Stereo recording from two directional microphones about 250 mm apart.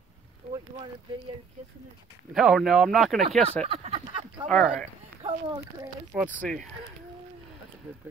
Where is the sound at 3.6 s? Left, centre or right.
Right.